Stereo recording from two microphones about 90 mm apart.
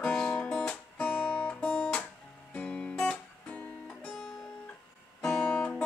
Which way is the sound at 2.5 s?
15° left (ahead or behind).